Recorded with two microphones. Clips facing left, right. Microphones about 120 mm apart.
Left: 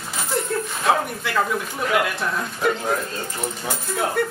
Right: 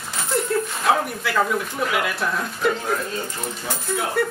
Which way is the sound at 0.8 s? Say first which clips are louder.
Left 1 dB; centre (ahead or behind).